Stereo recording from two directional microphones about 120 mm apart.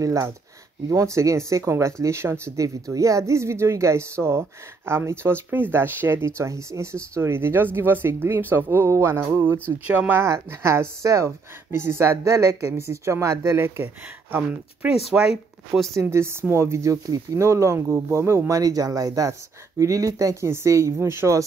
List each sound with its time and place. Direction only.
0.0 s speech: 25° right (ahead or behind)
15.0 s speech: 5° right (ahead or behind)
15.9 s speech: 25° right (ahead or behind)